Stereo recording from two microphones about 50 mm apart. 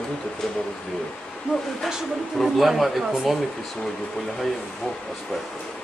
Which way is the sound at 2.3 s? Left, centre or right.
Centre.